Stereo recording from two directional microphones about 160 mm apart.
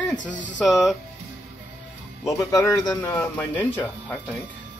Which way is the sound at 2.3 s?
20° left (ahead or behind).